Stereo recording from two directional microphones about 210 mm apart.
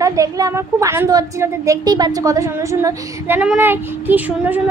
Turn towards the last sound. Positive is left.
turn(degrees=-10)  # may be behind; listen again after turning